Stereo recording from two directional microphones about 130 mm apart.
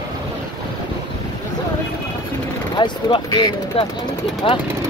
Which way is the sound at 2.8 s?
40° left (ahead or behind).